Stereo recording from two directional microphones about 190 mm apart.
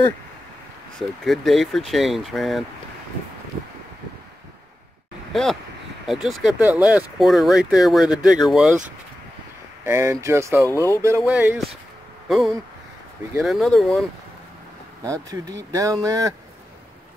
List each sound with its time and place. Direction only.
0.9 s speech: centre (ahead or behind)
5.3 s speech: centre (ahead or behind)
9.8 s speech: 15° right (ahead or behind)
15.7 s speech: 20° right (ahead or behind)